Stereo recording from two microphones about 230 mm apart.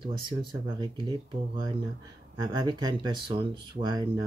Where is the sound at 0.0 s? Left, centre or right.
Right.